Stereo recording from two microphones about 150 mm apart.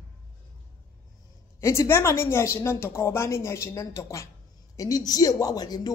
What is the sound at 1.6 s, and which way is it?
A woman's voice, 20° left (ahead or behind).